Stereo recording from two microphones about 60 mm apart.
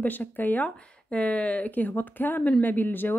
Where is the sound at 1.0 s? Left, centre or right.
Centre.